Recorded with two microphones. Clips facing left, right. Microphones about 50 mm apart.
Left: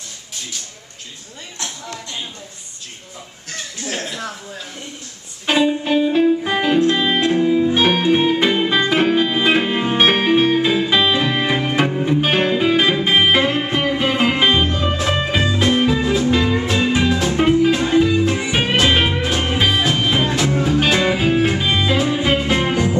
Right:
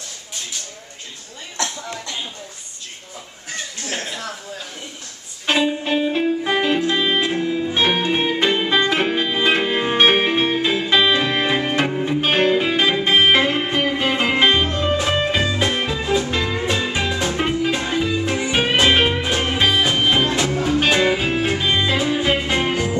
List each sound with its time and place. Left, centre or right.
3.9 s speech: centre
5.5 s music: centre
20.3 s music: centre